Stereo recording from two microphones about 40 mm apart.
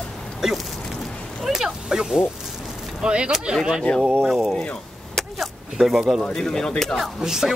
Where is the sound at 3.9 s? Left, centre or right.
Left.